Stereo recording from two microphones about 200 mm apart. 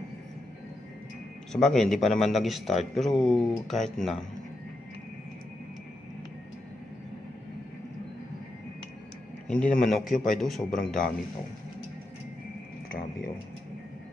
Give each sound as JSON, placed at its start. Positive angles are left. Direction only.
{"t": 1.5, "sound": "a man's voice", "side_deg": 0}
{"t": 9.5, "sound": "a man's voice", "side_deg": 5}